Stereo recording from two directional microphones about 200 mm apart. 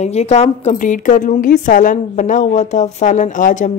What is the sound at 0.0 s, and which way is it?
A woman's voice, 35° left (ahead or behind).